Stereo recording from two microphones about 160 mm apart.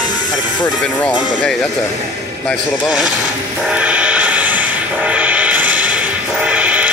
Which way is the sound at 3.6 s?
10° right (ahead or behind).